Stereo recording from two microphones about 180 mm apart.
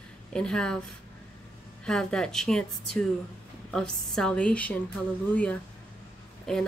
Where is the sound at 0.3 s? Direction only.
5° left (ahead or behind).